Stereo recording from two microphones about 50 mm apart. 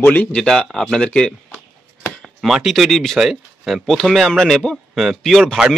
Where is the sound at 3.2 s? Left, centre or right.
Centre.